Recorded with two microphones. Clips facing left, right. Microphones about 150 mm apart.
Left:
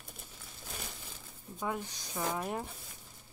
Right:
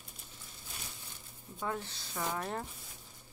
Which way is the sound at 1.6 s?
15° left (ahead or behind).